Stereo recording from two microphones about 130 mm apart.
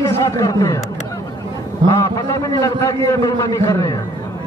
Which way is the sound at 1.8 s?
25° left (ahead or behind).